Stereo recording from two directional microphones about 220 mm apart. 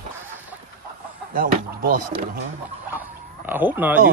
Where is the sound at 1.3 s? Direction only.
40° right (ahead or behind).